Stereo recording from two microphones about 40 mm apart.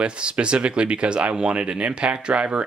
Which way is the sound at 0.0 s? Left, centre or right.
Right.